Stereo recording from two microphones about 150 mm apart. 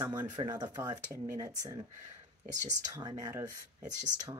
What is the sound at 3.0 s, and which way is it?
Speech, 25° right (ahead or behind).